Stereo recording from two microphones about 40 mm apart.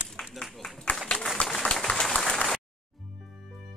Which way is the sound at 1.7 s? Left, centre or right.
Centre.